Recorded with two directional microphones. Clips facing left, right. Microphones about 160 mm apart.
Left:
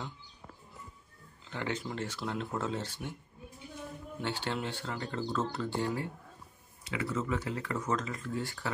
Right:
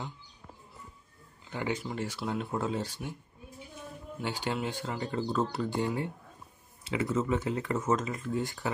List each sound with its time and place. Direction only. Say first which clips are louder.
1.5 s speech: right 2 dB; 10° right (ahead or behind)
4.2 s speech: right 2 dB; 10° right (ahead or behind)